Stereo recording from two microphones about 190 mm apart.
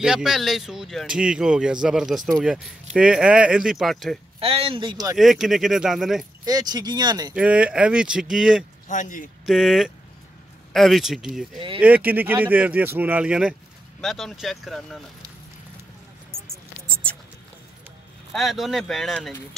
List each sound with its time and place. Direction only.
0.0 s speech: 5° right (ahead or behind)
4.4 s speech: 30° right (ahead or behind)
5.1 s speech: centre (ahead or behind)
6.4 s speech: 20° right (ahead or behind)
7.3 s speech: 5° right (ahead or behind)
8.8 s a man's voice: 40° left (ahead or behind)
9.5 s speech: centre (ahead or behind)
18.3 s speech: centre (ahead or behind)